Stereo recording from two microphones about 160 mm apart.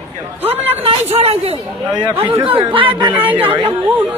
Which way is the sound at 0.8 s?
40° right (ahead or behind).